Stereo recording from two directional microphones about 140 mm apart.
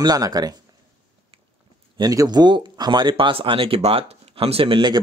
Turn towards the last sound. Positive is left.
turn(degrees=-35)  # may be behind; listen again after turning